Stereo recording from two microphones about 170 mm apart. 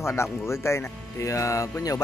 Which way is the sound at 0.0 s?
15° left (ahead or behind).